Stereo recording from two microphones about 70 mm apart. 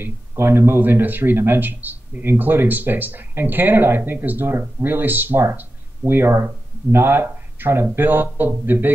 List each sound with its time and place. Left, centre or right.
0.0 s speech: right